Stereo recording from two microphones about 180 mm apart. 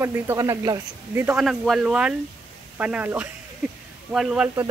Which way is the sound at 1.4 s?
Centre (ahead or behind).